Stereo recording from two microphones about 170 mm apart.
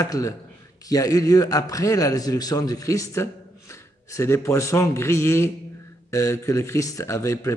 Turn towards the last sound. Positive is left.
turn(degrees=20)  # may be behind; listen again after turning